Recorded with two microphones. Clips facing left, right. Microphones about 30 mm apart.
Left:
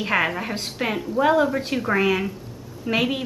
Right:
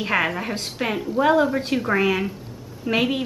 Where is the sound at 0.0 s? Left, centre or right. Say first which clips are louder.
Even; centre.